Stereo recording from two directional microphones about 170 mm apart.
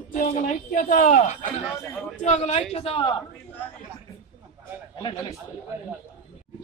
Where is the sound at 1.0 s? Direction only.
45° left (ahead or behind).